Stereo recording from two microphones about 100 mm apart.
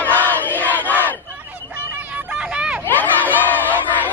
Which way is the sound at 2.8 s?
20° left (ahead or behind).